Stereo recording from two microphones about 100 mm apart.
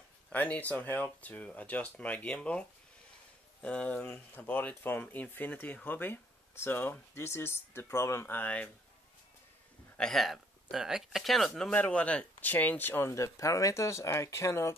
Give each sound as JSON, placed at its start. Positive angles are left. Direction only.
{"t": 0.3, "sound": "speech", "side_deg": 15}
{"t": 3.6, "sound": "speech", "side_deg": 10}
{"t": 9.9, "sound": "speech", "side_deg": 5}